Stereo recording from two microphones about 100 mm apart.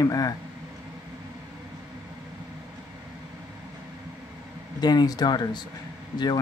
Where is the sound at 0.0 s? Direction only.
40° left (ahead or behind).